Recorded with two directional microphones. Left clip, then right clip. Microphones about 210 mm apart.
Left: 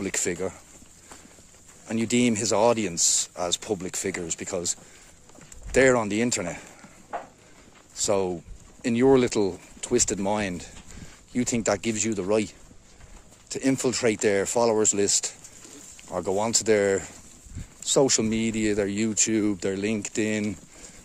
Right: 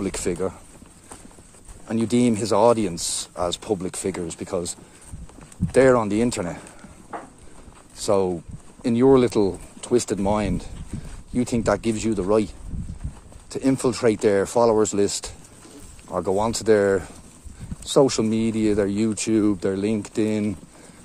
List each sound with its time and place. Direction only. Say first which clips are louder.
0.0 s speech: right 3 dB; 15° left (ahead or behind)
1.9 s speech: right 3 dB; 15° left (ahead or behind)
7.9 s speech: right 4 dB; 15° left (ahead or behind)